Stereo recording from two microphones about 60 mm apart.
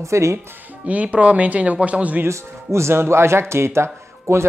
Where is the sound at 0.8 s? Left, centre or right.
Right.